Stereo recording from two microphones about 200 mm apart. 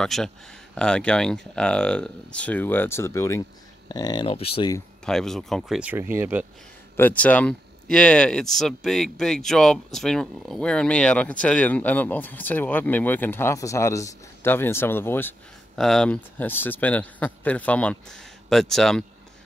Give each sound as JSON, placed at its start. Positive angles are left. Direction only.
{"t": 0.0, "sound": "speech", "side_deg": 5}
{"t": 5.0, "sound": "speech", "side_deg": 0}
{"t": 7.0, "sound": "speech", "side_deg": 10}